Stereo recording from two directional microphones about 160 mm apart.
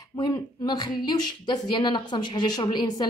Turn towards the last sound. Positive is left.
turn(degrees=25)  # may be behind; listen again after turning